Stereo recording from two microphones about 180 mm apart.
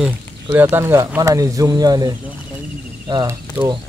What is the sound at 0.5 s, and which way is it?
Speech, 10° right (ahead or behind).